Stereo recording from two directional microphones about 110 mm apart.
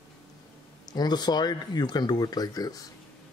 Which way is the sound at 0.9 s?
40° left (ahead or behind).